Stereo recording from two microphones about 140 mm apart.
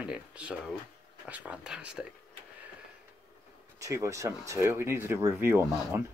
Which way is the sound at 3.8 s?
20° right (ahead or behind).